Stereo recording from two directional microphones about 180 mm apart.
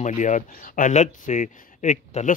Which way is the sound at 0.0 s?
45° left (ahead or behind).